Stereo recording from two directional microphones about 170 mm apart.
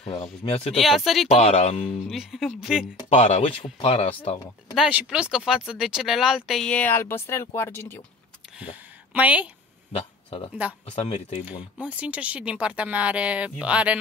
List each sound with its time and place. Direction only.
0.0 s speech: 30° left (ahead or behind)
0.7 s speech: centre (ahead or behind)
1.3 s speech: 40° left (ahead or behind)
2.0 s speech: centre (ahead or behind)
3.1 s speech: 40° left (ahead or behind)
4.7 s speech: 5° right (ahead or behind); by 8.0 s 15° left (ahead or behind)
8.5 s speech: 10° right (ahead or behind)
9.9 s speech: 35° left (ahead or behind)
11.8 s speech: 10° right (ahead or behind)